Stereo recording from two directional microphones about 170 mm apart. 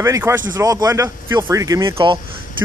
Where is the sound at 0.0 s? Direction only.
15° right (ahead or behind).